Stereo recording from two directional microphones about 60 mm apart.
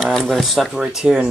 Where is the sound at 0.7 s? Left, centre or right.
Centre.